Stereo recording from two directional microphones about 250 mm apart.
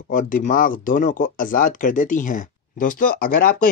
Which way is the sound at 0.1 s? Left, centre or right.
Left.